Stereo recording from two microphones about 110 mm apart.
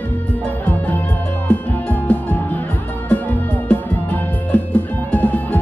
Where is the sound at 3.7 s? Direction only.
15° left (ahead or behind).